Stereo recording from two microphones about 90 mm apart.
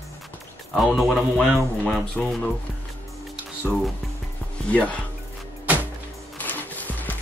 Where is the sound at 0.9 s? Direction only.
Centre (ahead or behind).